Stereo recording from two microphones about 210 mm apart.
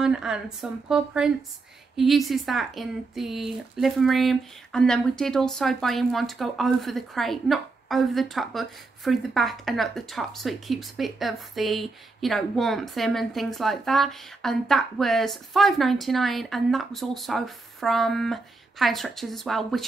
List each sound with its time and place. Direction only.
0.0 s speech: 5° right (ahead or behind)